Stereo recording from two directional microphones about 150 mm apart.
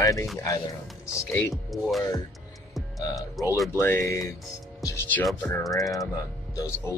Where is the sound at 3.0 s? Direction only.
25° left (ahead or behind).